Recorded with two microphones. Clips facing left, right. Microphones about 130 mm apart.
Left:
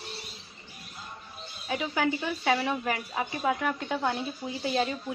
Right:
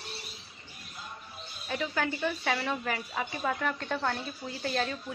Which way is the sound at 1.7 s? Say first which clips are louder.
Left 3 dB; 15° left (ahead or behind).